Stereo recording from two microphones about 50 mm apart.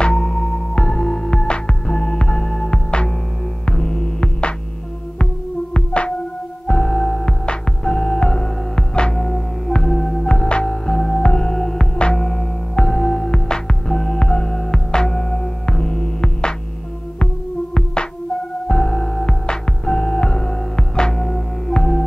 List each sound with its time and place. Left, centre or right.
0.0 s music: centre
18.7 s music: centre